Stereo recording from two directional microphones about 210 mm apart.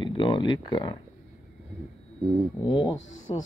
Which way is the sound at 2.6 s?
25° left (ahead or behind).